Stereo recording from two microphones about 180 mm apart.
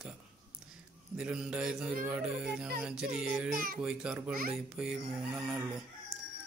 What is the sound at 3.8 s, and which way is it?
Speech, 5° right (ahead or behind).